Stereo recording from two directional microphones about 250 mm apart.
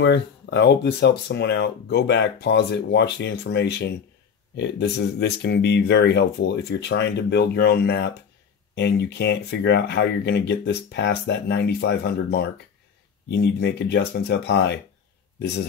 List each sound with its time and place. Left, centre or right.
0.0 s speech: left